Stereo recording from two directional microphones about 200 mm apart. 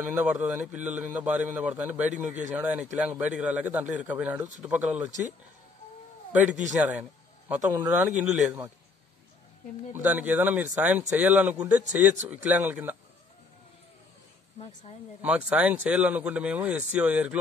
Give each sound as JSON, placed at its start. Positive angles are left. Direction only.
{"t": 0.0, "sound": "speech", "side_deg": -10}
{"t": 6.7, "sound": "speech", "side_deg": -5}
{"t": 9.9, "sound": "speech", "side_deg": -10}
{"t": 14.6, "sound": "speech", "side_deg": 30}
{"t": 15.2, "sound": "speech", "side_deg": -5}